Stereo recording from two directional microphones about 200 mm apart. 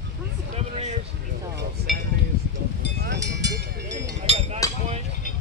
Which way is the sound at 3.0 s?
60° right (ahead or behind).